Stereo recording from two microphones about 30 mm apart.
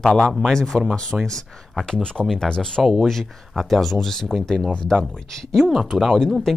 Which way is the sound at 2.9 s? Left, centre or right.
Centre.